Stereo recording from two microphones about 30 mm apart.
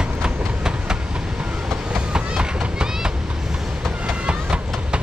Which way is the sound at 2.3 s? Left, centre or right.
Right.